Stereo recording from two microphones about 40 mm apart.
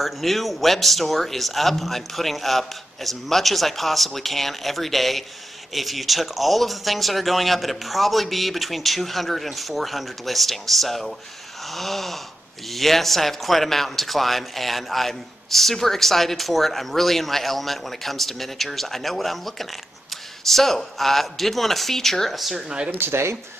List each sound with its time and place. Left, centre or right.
0.0 s speech: centre
22.9 s speech: right